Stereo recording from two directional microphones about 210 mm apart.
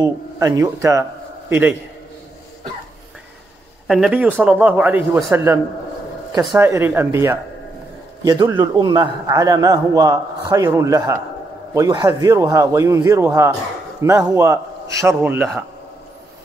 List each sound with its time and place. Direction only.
0.0 s a man's voice: 15° right (ahead or behind)
3.8 s a man's voice: centre (ahead or behind)
6.6 s a man's voice: 10° right (ahead or behind)